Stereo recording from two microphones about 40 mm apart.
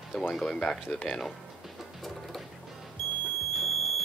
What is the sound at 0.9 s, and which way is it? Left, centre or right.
Speech, left.